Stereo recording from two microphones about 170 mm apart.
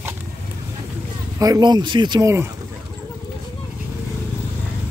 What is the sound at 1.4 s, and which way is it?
Speech, 25° right (ahead or behind).